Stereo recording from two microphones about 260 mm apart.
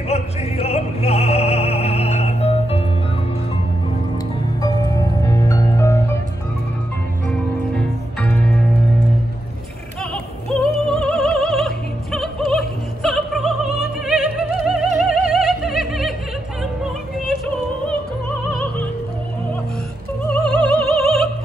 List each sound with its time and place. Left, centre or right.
0.1 s opera: left
4.6 s music: centre
7.2 s music: centre
10.1 s opera: centre
15.0 s music: centre
20.2 s opera: centre